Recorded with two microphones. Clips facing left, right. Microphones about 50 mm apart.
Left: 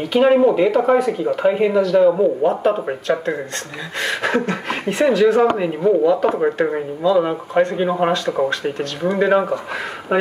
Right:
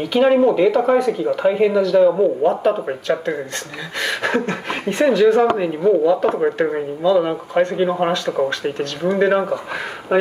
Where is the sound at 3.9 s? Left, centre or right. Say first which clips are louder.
Even; left.